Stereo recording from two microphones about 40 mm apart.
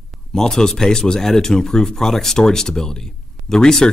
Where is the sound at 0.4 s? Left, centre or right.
Centre.